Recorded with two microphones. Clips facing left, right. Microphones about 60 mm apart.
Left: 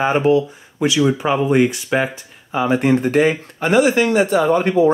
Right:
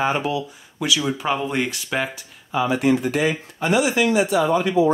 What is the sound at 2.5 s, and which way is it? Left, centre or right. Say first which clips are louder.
Speech: left 3 dB; left.